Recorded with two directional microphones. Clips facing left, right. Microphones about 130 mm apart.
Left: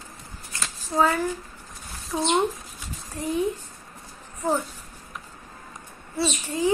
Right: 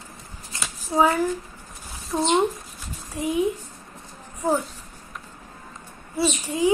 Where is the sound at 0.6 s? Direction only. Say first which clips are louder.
Right 2 dB; 10° right (ahead or behind).